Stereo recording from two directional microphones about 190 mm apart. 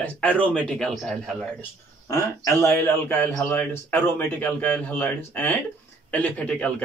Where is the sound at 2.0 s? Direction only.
15° left (ahead or behind).